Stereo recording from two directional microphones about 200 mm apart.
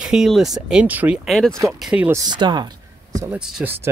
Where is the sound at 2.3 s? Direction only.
20° right (ahead or behind).